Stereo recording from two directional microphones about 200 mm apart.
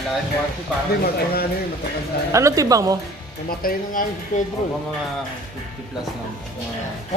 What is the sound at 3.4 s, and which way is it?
Speech, 45° left (ahead or behind).